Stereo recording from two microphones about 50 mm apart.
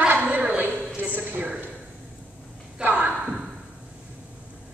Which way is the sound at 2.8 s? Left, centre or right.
Right.